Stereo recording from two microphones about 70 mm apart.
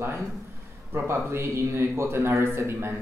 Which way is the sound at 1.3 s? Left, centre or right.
Right.